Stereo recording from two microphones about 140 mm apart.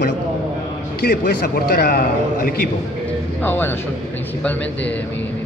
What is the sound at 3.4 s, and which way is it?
Speech, 15° left (ahead or behind).